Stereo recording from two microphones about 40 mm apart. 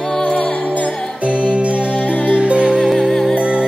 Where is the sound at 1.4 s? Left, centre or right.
Right.